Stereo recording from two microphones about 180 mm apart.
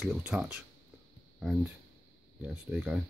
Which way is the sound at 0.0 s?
5° right (ahead or behind).